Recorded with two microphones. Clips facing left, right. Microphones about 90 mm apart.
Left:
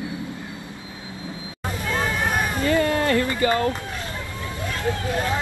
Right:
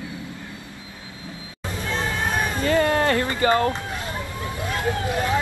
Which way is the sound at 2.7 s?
40° right (ahead or behind).